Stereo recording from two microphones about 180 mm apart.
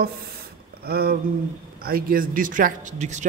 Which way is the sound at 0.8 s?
60° right (ahead or behind).